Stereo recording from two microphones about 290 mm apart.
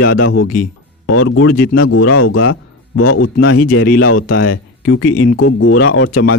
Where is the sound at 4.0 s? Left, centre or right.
Left.